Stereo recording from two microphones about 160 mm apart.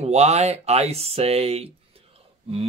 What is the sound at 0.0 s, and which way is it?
Speech, 45° right (ahead or behind).